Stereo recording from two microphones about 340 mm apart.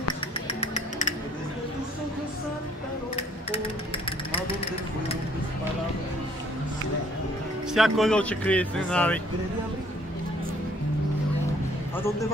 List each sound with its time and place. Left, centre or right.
0.5 s music: centre
7.7 s speech: centre